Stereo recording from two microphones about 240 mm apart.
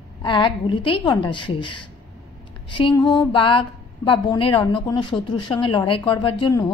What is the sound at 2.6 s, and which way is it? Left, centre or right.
A woman's voice, left.